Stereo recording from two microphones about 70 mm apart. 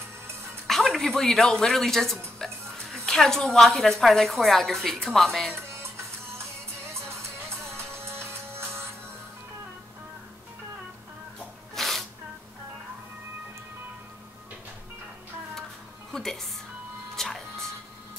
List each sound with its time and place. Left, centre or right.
0.7 s speech: centre
5.5 s music: right
11.3 s rub: centre
16.1 s music: centre